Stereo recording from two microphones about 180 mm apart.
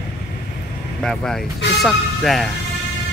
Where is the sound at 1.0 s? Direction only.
5° left (ahead or behind).